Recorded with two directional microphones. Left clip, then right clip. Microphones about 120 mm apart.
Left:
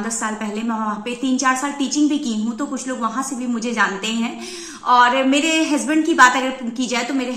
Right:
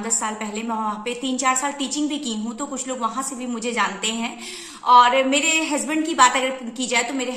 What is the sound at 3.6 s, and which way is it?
A woman's voice, 35° right (ahead or behind).